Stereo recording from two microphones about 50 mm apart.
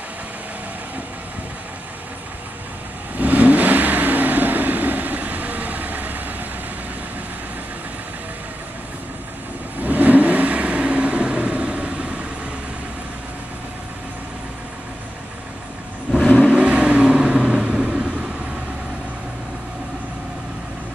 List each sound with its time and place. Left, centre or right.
3.2 s vehicle: right
9.8 s vehicle: right
16.4 s vehicle: right